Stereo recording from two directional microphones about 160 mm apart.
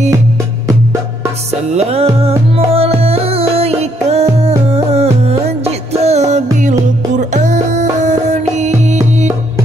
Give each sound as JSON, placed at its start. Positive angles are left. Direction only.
{"t": 1.7, "sound": "music", "side_deg": -40}